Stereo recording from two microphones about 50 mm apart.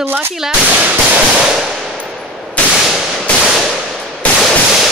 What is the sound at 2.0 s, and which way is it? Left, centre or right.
Machine gun, centre.